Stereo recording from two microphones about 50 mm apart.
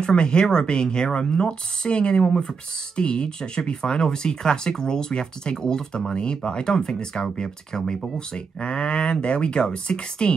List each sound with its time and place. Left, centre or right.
0.0 s speech: centre